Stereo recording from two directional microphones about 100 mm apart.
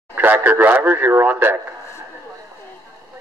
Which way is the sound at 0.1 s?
20° right (ahead or behind).